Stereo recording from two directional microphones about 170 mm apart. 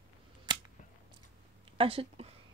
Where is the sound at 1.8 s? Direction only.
35° right (ahead or behind).